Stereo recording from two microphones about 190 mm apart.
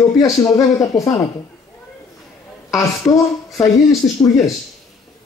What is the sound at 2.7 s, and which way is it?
Speech, 15° left (ahead or behind).